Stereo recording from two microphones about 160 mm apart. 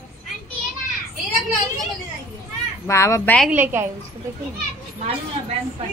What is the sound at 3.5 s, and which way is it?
Speech, 15° right (ahead or behind).